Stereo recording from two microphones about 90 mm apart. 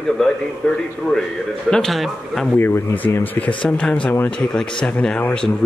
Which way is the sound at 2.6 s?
25° left (ahead or behind).